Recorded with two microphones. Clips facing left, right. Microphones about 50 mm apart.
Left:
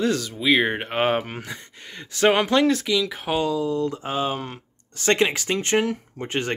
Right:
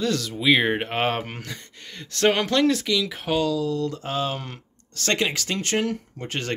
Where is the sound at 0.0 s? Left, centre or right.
Centre.